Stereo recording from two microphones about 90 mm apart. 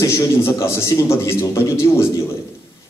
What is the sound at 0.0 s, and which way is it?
A man's voice, 30° left (ahead or behind).